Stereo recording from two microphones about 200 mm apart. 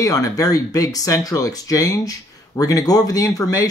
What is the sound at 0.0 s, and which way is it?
Speech, 15° left (ahead or behind).